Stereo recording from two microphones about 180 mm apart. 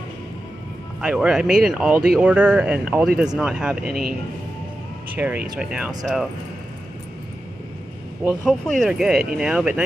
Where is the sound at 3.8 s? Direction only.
55° right (ahead or behind).